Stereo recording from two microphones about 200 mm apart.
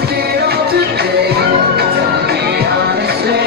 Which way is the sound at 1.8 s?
50° right (ahead or behind).